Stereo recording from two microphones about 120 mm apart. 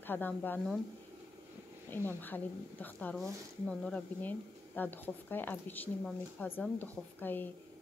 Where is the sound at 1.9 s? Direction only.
15° left (ahead or behind).